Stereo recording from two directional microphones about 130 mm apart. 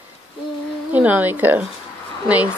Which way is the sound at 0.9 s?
10° right (ahead or behind).